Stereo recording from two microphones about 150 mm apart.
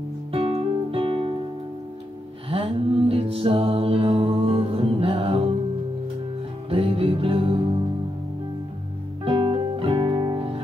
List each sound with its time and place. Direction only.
0.3 s music: 35° right (ahead or behind)
2.5 s music: 40° right (ahead or behind)
6.7 s music: 40° right (ahead or behind)
9.2 s music: 35° right (ahead or behind)